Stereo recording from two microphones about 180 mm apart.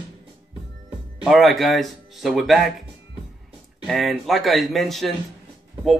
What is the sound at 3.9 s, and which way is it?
Speech, centre (ahead or behind).